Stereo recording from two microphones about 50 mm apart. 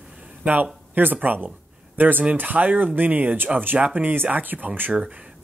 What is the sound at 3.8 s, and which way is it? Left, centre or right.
Speech, right.